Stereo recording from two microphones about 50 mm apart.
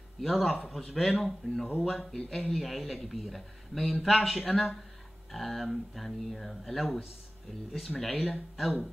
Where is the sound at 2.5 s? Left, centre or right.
Centre.